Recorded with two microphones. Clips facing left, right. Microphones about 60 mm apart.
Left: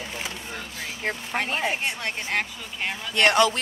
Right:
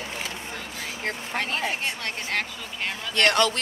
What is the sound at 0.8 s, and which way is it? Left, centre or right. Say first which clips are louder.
Speech: left 2 dB; centre.